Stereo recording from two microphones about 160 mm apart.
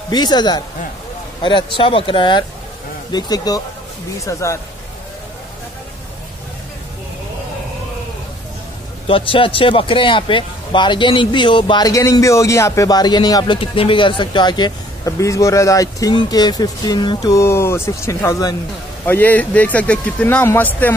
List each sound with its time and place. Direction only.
0.1 s speech: 25° left (ahead or behind)
9.0 s speech: 35° left (ahead or behind)
19.0 s speech: 10° left (ahead or behind)